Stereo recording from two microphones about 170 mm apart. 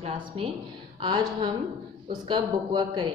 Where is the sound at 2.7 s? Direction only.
25° right (ahead or behind).